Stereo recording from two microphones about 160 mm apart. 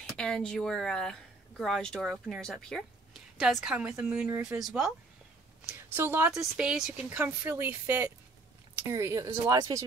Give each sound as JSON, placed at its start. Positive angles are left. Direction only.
{"t": 0.2, "sound": "speech", "side_deg": 5}
{"t": 5.7, "sound": "a woman's voice", "side_deg": -15}